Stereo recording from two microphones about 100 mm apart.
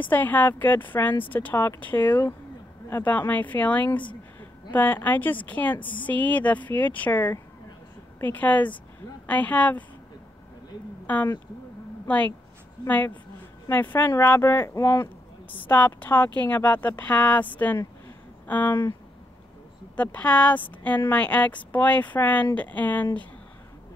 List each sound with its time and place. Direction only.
0.0 s speech: 20° left (ahead or behind)
3.9 s speech: 50° left (ahead or behind)
4.7 s speech: 20° left (ahead or behind)
11.1 s speech: 15° left (ahead or behind)
12.8 s speech: 15° left (ahead or behind)
15.7 s speech: 20° left (ahead or behind)
20.0 s speech: 15° left (ahead or behind)